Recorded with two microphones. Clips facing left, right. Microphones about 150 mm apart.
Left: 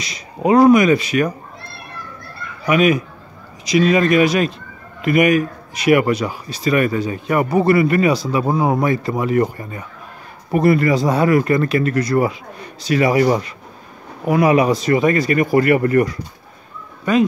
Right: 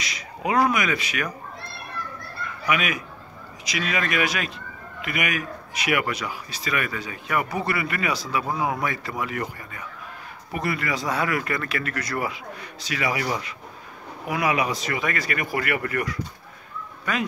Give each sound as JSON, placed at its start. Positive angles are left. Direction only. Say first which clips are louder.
{"t": 0.0, "sound": "speech", "louder": "left 9 dB", "side_deg": 30}
{"t": 2.6, "sound": "speech", "louder": "left 11 dB", "side_deg": 35}